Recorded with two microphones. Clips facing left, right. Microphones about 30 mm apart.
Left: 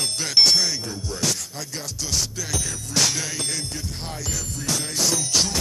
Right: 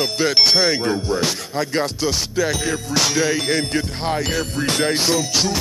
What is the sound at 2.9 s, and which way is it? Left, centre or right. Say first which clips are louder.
Music: right 4 dB; centre.